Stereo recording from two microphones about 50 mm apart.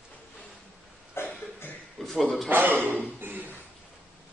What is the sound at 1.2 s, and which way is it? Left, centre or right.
Cough, left.